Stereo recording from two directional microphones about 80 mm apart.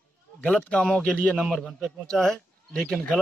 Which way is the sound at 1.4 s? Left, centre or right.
Centre.